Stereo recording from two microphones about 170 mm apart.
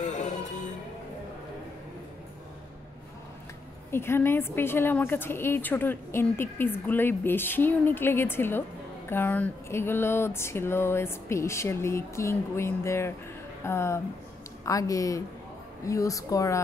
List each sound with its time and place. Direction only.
0.0 s music: 45° left (ahead or behind)
3.9 s a woman's voice: 15° left (ahead or behind)